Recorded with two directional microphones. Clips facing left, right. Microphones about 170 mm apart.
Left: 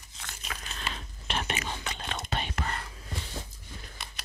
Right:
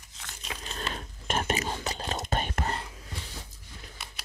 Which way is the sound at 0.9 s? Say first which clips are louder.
Right 5 dB; 45° right (ahead or behind).